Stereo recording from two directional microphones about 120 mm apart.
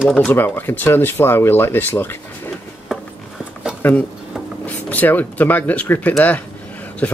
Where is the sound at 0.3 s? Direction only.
15° left (ahead or behind).